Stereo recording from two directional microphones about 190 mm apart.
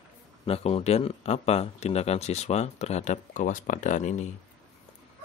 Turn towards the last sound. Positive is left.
turn(degrees=40)  # may be behind; listen again after turning